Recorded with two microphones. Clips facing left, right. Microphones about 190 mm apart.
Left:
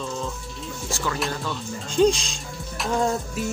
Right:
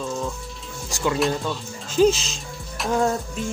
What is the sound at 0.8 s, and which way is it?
Speech, 15° right (ahead or behind).